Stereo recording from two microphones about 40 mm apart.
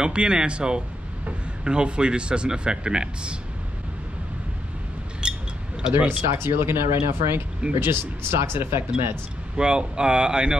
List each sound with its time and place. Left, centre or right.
0.0 s speech: right
5.2 s a sound: right
5.8 s speech: right
6.0 s speech: right
9.6 s speech: right